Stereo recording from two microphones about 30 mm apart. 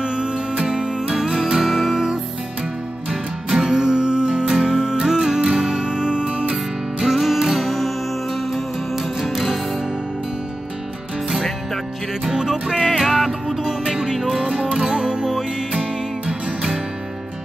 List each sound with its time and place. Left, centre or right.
0.0 s music: right
1.1 s music: centre
3.5 s music: right
4.6 s music: centre
4.8 s music: centre
6.5 s music: centre
12.4 s music: centre; by 16.8 s right